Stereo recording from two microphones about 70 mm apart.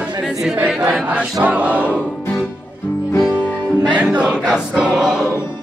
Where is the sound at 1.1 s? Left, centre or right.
Right.